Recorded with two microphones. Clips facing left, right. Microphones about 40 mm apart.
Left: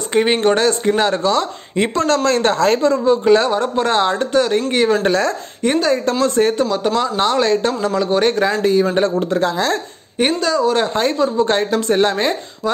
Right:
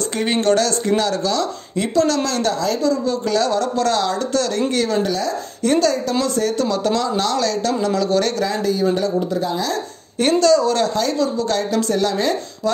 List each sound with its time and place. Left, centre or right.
0.1 s speech: left
3.1 s speech: left
5.0 s speech: left
5.6 s speech: left
6.2 s speech: left
6.6 s speech: left
9.1 s speech: left
10.1 s a woman's voice: centre
11.0 s speech: left
12.6 s speech: centre